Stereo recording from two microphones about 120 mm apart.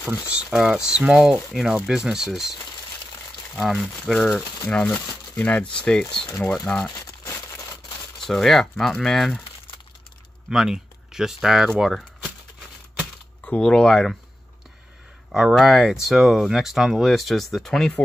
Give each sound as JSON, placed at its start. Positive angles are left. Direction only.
{"t": 0.0, "sound": "speech", "side_deg": -5}
{"t": 3.5, "sound": "speech", "side_deg": 0}
{"t": 4.4, "sound": "speech", "side_deg": 15}
{"t": 6.9, "sound": "crumpling", "side_deg": 30}
{"t": 8.3, "sound": "speech", "side_deg": 0}
{"t": 10.5, "sound": "speech", "side_deg": -5}
{"t": 13.5, "sound": "speech", "side_deg": 5}
{"t": 15.3, "sound": "speech", "side_deg": -5}